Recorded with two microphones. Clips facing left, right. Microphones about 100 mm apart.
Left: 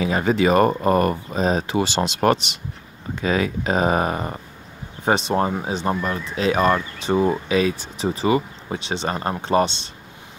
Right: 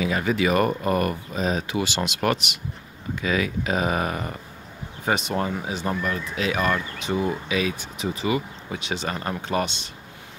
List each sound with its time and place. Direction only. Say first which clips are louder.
0.0 s speech: left 4 dB; 35° left (ahead or behind)